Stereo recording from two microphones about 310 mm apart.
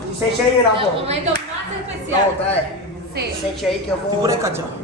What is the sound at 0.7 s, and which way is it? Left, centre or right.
Speech, centre.